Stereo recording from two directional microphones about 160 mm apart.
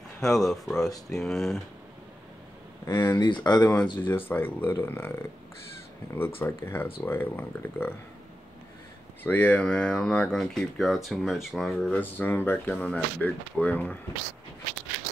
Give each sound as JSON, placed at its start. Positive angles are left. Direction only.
{"t": 0.2, "sound": "speech", "side_deg": 0}
{"t": 2.9, "sound": "speech", "side_deg": 25}
{"t": 4.0, "sound": "speech", "side_deg": 10}
{"t": 6.4, "sound": "speech", "side_deg": 15}
{"t": 9.2, "sound": "speech", "side_deg": 10}